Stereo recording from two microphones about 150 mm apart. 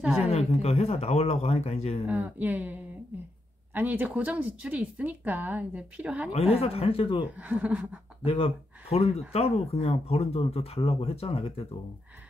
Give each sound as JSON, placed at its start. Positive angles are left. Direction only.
{"t": 0.0, "sound": "speech", "side_deg": -10}
{"t": 0.3, "sound": "speech", "side_deg": 45}
{"t": 2.0, "sound": "speech", "side_deg": -10}
{"t": 6.3, "sound": "speech", "side_deg": 45}
{"t": 7.3, "sound": "speech", "side_deg": -10}
{"t": 8.3, "sound": "speech", "side_deg": 40}